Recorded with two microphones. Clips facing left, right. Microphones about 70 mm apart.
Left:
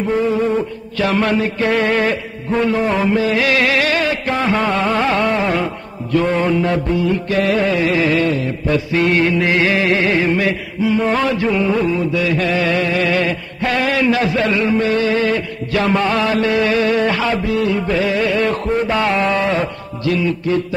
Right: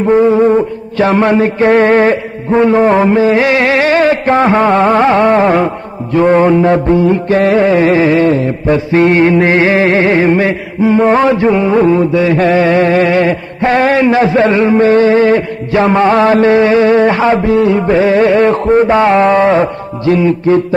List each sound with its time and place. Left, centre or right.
0.0 s music: right